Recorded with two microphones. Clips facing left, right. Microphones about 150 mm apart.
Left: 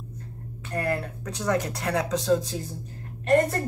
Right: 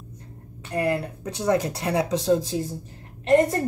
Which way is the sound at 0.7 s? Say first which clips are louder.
Right 3 dB; 15° right (ahead or behind).